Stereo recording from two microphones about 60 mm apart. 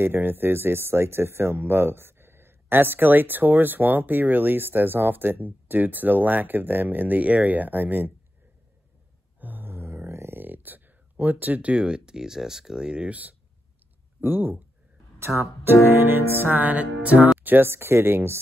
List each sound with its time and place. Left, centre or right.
0.0 s speech: right
9.4 s mantra: right
10.3 s speech: right
15.1 s speech: right
16.3 s music: right
17.4 s speech: right